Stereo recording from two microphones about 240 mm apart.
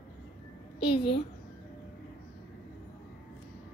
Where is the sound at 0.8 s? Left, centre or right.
Left.